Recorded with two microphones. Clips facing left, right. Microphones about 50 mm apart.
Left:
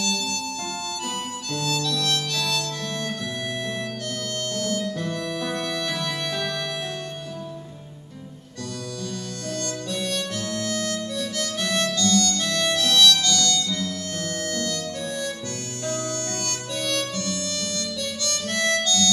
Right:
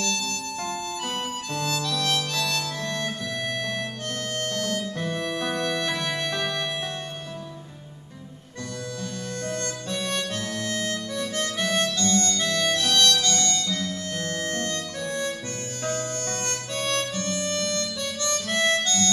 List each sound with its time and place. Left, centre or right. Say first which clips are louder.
0.0 s harmonica: left 1 dB; right
5.0 s harmonica: even; right
5.6 s music: right 1 dB; centre
9.5 s harmonica: left 3 dB; right
12.4 s harmonica: left 1 dB; right